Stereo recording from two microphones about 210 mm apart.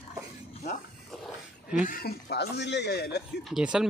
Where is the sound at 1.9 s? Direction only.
45° left (ahead or behind).